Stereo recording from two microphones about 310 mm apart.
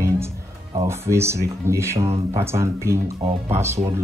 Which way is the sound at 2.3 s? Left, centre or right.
Centre.